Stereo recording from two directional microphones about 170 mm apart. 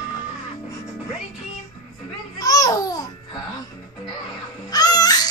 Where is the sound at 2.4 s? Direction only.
20° left (ahead or behind).